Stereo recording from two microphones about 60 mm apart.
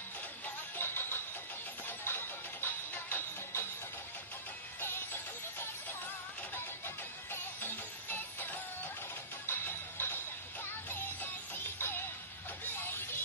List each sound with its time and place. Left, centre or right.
0.7 s music: left
4.7 s music: left
7.2 s music: left